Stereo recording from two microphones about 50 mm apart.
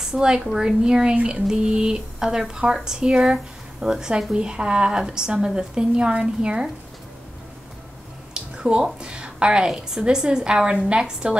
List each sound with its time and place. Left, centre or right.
0.0 s a woman's voice: centre
8.4 s a sound: centre
9.0 s speech: centre